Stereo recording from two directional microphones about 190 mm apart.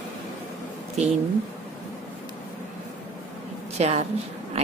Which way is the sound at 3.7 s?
35° right (ahead or behind).